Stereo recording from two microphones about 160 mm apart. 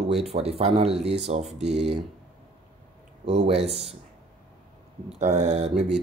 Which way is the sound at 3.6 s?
40° right (ahead or behind).